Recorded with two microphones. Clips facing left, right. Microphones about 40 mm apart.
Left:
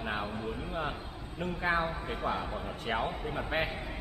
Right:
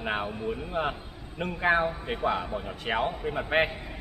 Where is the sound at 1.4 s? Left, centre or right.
Right.